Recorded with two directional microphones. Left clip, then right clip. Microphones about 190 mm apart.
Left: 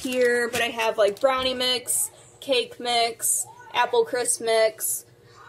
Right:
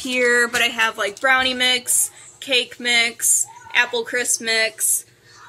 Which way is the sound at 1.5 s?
40° right (ahead or behind).